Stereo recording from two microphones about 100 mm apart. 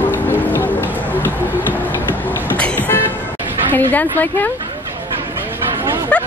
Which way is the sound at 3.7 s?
20° left (ahead or behind).